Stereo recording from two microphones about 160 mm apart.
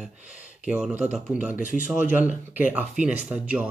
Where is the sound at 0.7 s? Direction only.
5° right (ahead or behind).